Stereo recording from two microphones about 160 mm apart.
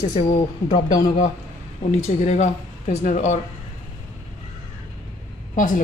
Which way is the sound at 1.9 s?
45° left (ahead or behind).